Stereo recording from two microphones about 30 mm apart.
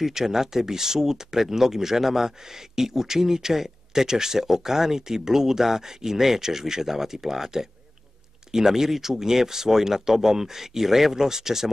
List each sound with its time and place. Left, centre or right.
0.0 s speech: centre